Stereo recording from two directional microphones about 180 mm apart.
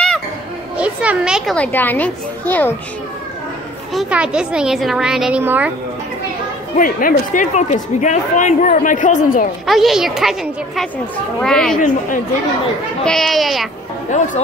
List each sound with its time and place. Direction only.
0.7 s a child's voice: 5° right (ahead or behind); by 2.7 s 10° left (ahead or behind)
3.9 s a woman's voice: 5° right (ahead or behind)
6.8 s speech: 50° left (ahead or behind)
9.7 s a woman's voice: centre (ahead or behind)
13.0 s a woman's voice: centre (ahead or behind)
14.1 s speech: 45° left (ahead or behind)